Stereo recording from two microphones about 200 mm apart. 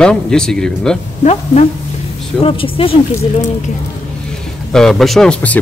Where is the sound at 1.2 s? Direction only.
35° left (ahead or behind).